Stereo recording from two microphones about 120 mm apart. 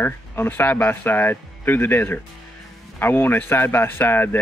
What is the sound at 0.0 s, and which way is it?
A man's voice, 15° left (ahead or behind).